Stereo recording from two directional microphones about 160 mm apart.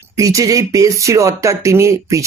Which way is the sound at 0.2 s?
20° right (ahead or behind).